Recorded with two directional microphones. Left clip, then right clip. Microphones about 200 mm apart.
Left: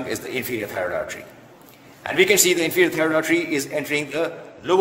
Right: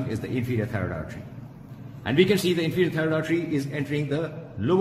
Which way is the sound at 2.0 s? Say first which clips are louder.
Left 5 dB; 30° left (ahead or behind).